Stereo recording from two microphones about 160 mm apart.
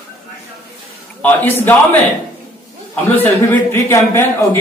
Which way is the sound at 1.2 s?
10° left (ahead or behind).